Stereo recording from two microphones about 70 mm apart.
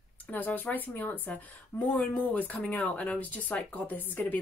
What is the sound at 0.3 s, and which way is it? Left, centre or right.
A woman's voice, left.